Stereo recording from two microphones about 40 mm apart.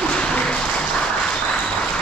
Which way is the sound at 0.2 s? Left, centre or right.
Left.